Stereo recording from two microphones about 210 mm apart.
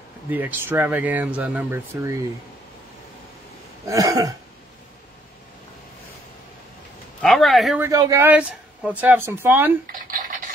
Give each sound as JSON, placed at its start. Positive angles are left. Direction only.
{"t": 0.3, "sound": "speech", "side_deg": -10}
{"t": 3.8, "sound": "speech", "side_deg": -15}
{"t": 7.2, "sound": "speech", "side_deg": 0}
{"t": 7.9, "sound": "speech", "side_deg": -15}